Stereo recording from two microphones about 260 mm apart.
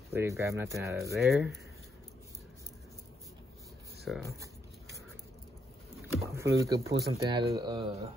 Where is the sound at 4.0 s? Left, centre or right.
Centre.